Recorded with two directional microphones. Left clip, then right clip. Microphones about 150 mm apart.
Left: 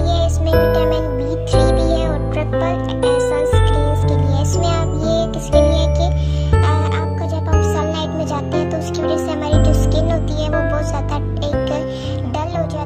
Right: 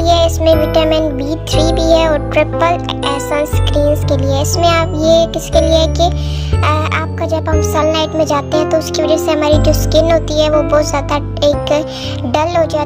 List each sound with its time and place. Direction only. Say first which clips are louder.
0.0 s music: right 9 dB; 40° right (ahead or behind)
7.7 s speech: right 8 dB; 40° right (ahead or behind)
12.3 s music: right 11 dB; 40° right (ahead or behind)